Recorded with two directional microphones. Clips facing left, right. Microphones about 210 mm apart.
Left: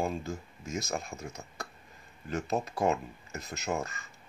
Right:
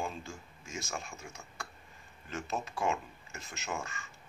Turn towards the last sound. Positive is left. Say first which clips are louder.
# left 6 dB
turn(degrees=35)  # may be behind; listen again after turning